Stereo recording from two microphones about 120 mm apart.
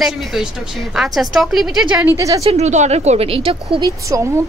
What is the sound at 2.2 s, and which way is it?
Speech, 30° right (ahead or behind).